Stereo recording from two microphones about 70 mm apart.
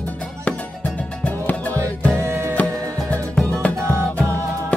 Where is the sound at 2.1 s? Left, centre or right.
Right.